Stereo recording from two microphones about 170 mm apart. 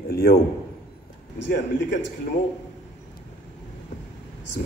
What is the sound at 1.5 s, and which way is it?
Speech, 90° left.